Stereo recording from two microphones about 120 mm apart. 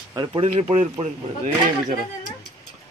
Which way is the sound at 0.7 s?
70° right (ahead or behind).